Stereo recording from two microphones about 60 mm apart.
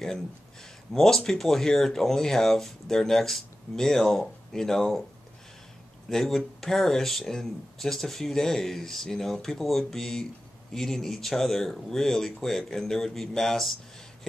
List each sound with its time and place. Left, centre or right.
0.9 s speech: centre
6.0 s speech: centre